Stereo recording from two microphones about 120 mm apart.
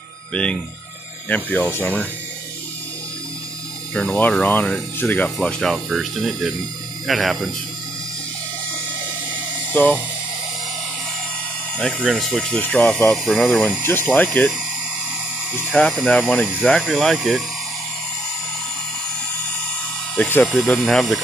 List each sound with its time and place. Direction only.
0.3 s speech: 10° left (ahead or behind)
3.9 s speech: 10° left (ahead or behind)
9.8 s speech: 15° left (ahead or behind)
11.7 s speech: 10° left (ahead or behind)
13.8 s speech: 15° left (ahead or behind)
15.7 s speech: 5° left (ahead or behind)
20.2 s speech: 15° left (ahead or behind)